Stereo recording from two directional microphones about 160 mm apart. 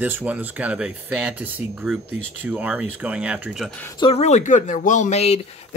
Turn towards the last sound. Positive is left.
turn(degrees=40)  # may be behind; listen again after turning